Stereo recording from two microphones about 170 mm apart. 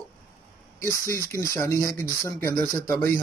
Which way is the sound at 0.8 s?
15° left (ahead or behind).